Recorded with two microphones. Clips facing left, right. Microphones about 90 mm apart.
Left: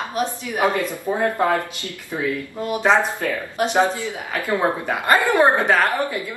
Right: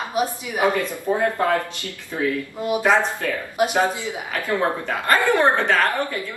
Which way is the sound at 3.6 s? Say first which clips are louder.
Left 1 dB; 15° right (ahead or behind).